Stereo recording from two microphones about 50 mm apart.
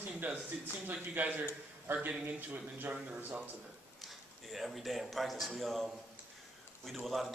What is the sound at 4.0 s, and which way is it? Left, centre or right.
A man's voice, centre.